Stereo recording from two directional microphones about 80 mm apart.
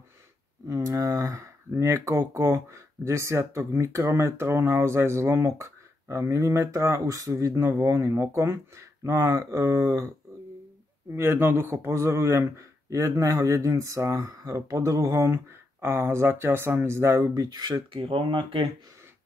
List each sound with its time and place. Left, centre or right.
0.7 s speech: right
11.1 s speech: right
14.4 s speech: right
15.2 s speech: right
17.3 s speech: right